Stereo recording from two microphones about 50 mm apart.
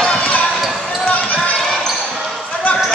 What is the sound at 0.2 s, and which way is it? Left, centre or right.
Basketball bounce, left.